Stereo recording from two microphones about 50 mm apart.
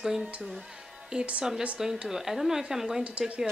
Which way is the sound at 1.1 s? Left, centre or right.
Right.